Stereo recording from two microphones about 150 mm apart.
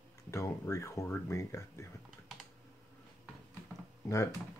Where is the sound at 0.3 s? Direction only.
20° left (ahead or behind).